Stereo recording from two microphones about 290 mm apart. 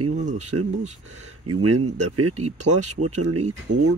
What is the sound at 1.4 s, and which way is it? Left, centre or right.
Speech, right.